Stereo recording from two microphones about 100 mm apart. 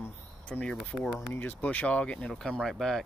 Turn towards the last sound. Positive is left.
turn(degrees=0)  # may be behind; listen again after turning